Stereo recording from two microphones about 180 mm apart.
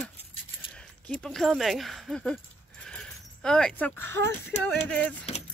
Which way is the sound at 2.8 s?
5° left (ahead or behind).